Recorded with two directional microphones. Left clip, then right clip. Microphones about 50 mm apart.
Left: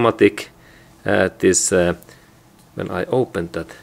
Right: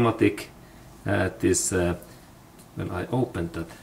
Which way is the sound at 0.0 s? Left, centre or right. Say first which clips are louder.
Left 8 dB; left.